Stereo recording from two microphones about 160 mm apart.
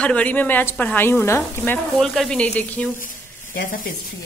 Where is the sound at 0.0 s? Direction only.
10° left (ahead or behind).